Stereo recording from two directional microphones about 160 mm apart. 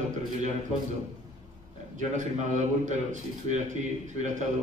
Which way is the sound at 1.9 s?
50° right (ahead or behind).